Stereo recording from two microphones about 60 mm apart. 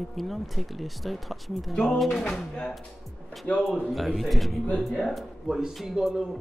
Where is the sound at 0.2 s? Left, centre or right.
Centre.